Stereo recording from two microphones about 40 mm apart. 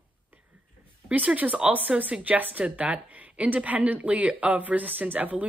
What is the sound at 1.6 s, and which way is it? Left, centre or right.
Speech, right.